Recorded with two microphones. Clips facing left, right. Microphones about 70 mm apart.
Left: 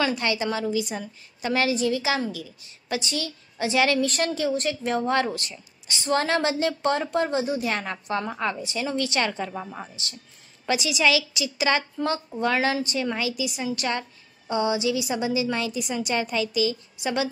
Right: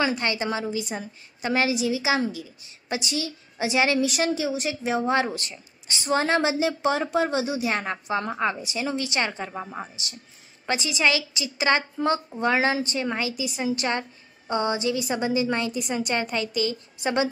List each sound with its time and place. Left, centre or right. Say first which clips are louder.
0.0 s a woman's voice: even; right; by 7.6 s centre
7.6 s a woman's voice: right 1 dB; centre
10.7 s a woman's voice: left 1 dB; right
14.5 s a woman's voice: left 1 dB; right